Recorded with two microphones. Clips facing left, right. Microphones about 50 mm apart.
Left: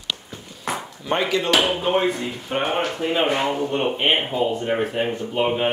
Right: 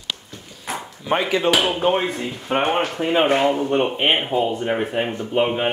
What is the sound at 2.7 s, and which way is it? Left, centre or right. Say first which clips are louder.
Speech: right 3 dB; right.